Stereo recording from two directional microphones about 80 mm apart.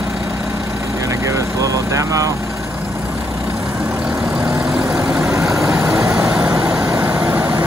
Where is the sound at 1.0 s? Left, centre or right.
Right.